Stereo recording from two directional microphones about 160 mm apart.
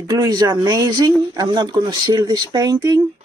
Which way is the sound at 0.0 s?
25° right (ahead or behind).